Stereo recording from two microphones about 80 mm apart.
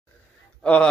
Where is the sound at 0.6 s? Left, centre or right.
Centre.